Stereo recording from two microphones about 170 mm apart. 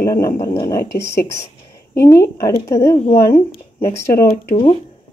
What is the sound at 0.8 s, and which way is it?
Speech, 70° left (ahead or behind).